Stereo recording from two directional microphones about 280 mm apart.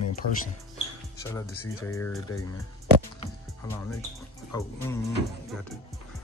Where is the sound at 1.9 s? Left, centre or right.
Centre.